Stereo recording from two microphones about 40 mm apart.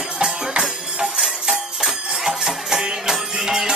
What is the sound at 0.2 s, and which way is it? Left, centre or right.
Music, centre.